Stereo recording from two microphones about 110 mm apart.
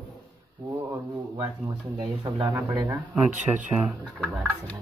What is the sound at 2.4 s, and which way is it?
Speech, 20° right (ahead or behind).